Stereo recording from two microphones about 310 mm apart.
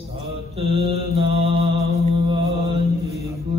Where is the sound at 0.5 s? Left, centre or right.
Centre.